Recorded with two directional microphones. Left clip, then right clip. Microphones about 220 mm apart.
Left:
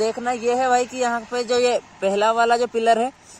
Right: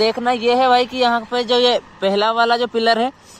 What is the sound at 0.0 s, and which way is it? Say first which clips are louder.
Speech: right 5 dB; centre (ahead or behind).